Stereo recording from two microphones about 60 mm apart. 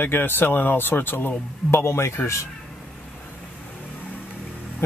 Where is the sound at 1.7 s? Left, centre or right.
Left.